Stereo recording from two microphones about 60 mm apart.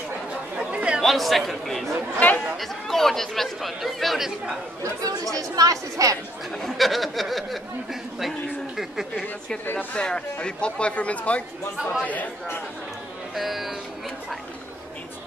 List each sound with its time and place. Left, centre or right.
0.6 s chatter: centre
1.0 s speech: centre
2.1 s speech: left
2.5 s speech: centre
5.0 s speech: right
6.5 s speech: centre
9.9 s speech: centre
13.3 s speech: centre